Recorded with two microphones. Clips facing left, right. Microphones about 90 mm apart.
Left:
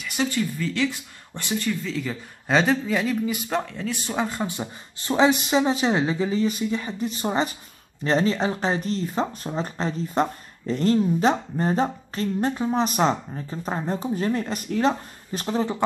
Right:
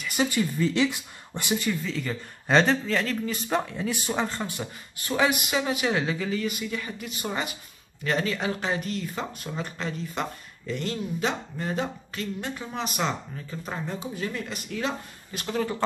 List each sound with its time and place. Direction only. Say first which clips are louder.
0.0 s speech: even; 5° right (ahead or behind)
3.4 s speech: even; 5° right (ahead or behind)
4.4 s speech: left 4 dB; 20° left (ahead or behind)